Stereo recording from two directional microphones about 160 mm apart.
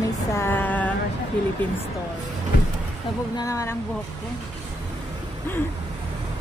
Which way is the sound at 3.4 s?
20° left (ahead or behind).